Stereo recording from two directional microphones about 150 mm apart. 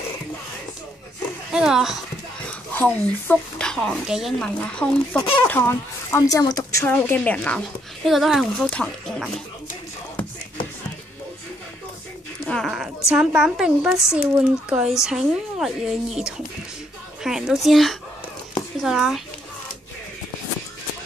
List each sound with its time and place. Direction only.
1.5 s speech: 5° right (ahead or behind)
2.4 s speech: 10° left (ahead or behind)
6.9 s speech: 10° left (ahead or behind)
12.4 s a woman's voice: centre (ahead or behind)